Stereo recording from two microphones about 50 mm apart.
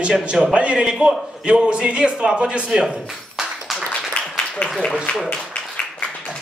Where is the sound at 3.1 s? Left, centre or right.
Centre.